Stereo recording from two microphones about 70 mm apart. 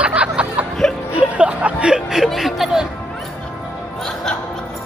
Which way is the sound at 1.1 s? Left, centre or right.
Centre.